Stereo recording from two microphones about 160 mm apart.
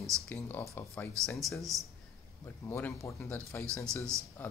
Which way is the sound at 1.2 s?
Centre (ahead or behind).